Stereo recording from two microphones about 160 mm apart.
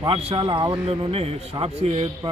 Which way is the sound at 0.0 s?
35° right (ahead or behind).